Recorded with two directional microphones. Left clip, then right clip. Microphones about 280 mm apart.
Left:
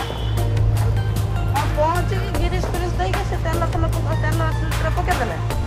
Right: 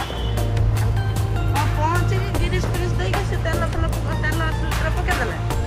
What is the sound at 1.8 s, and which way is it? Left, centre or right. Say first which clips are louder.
Music: left 2 dB; left.